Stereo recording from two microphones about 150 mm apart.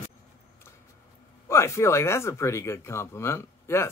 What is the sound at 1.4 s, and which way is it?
Speech, 20° left (ahead or behind).